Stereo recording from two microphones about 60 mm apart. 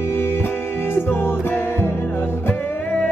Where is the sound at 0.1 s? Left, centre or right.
Left.